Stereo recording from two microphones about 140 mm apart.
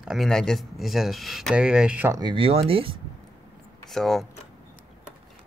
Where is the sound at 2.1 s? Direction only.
35° right (ahead or behind).